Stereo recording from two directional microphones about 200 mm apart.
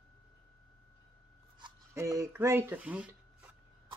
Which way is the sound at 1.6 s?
15° right (ahead or behind).